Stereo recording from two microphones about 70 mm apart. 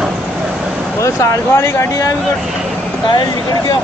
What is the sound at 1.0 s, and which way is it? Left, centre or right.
Speech, left.